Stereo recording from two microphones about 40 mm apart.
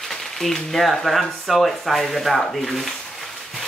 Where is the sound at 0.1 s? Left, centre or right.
Centre.